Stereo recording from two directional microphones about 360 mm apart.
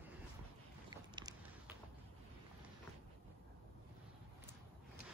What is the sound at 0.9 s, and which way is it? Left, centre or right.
Boat, centre.